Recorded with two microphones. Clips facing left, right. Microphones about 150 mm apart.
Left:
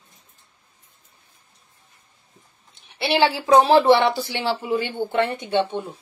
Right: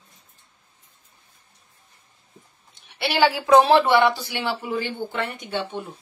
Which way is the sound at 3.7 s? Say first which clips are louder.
Left 2 dB; 30° left (ahead or behind).